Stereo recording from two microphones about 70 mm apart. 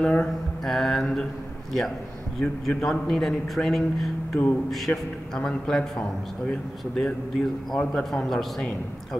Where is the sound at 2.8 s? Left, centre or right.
Centre.